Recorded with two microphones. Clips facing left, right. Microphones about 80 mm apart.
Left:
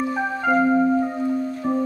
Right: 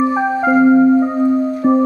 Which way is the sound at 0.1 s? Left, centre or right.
Centre.